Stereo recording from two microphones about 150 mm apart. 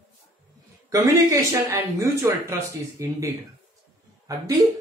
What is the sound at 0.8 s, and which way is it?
Speech, 20° right (ahead or behind).